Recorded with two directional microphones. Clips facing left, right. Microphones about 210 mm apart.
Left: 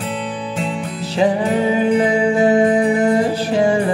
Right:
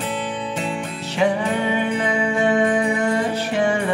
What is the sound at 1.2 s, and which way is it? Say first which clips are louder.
Music: left 4 dB; 35° left (ahead or behind).